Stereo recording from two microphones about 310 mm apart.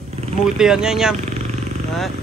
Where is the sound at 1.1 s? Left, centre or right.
Right.